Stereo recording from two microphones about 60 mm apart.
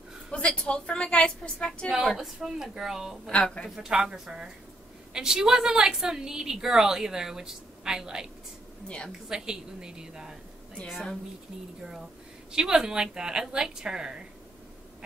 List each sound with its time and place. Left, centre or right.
0.3 s a woman's voice: centre
1.9 s a woman's voice: centre
3.3 s a woman's voice: centre
3.7 s a woman's voice: centre
8.8 s a woman's voice: centre
9.3 s a woman's voice: centre
12.5 s a woman's voice: centre